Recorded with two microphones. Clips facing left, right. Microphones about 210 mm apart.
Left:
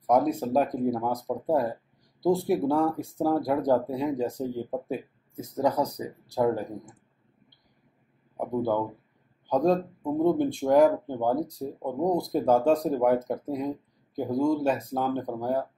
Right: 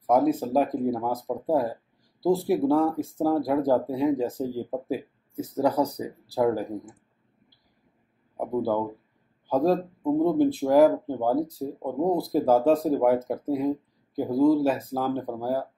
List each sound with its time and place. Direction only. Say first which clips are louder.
0.0 s speech: right 2 dB; 5° right (ahead or behind)
8.4 s speech: right 1 dB; 5° right (ahead or behind)